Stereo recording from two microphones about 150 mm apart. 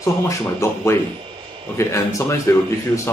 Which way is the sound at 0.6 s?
20° left (ahead or behind).